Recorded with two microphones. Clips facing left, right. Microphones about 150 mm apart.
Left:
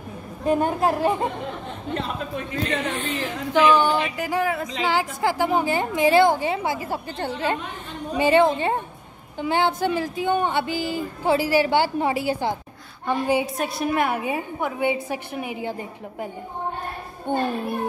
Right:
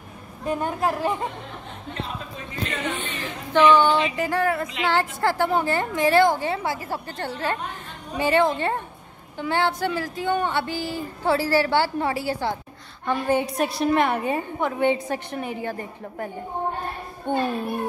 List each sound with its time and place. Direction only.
0.5 s a woman's voice: 25° left (ahead or behind)
2.7 s speech: 35° left (ahead or behind)
3.2 s a woman's voice: 10° left (ahead or behind)
17.3 s speech: 15° left (ahead or behind)